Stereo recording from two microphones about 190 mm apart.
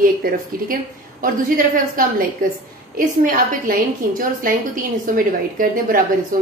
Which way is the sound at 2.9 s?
45° right (ahead or behind).